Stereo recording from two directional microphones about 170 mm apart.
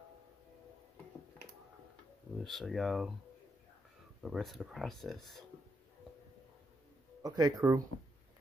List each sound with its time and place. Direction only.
2.3 s speech: centre (ahead or behind)
4.2 s speech: centre (ahead or behind)
7.2 s speech: 20° right (ahead or behind)